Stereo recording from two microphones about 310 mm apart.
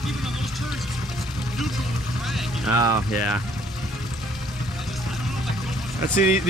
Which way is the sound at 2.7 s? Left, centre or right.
Left.